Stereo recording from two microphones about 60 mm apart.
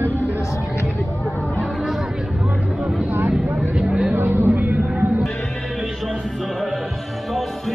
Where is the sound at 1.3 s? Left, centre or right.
Left.